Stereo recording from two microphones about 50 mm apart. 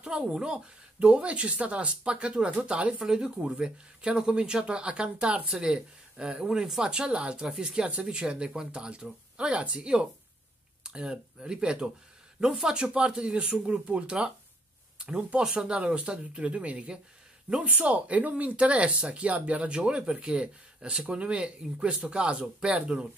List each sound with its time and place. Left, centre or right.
0.0 s speech: centre
3.0 s speech: centre